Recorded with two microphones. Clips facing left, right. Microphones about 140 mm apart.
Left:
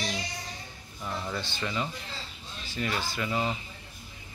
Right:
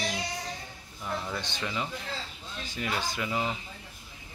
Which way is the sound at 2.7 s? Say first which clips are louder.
Left 1 dB; 15° right (ahead or behind).